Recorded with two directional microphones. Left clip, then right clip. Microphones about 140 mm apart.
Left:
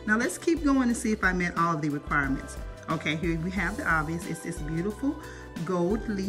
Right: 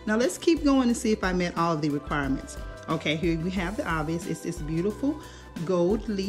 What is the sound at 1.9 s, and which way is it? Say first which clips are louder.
Speech: left 1 dB; 25° right (ahead or behind).